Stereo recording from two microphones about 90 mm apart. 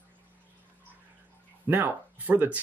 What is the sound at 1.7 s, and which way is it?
Speech, 20° right (ahead or behind).